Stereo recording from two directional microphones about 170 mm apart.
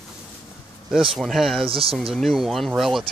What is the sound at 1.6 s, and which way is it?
Speech, 35° right (ahead or behind).